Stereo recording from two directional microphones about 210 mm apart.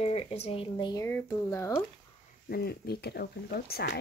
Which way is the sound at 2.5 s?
50° left (ahead or behind).